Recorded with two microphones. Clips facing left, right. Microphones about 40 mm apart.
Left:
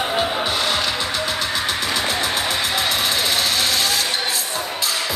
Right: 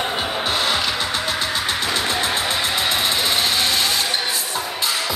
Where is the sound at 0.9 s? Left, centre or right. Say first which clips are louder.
Even; right.